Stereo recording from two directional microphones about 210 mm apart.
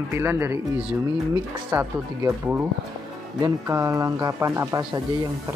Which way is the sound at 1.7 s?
10° right (ahead or behind).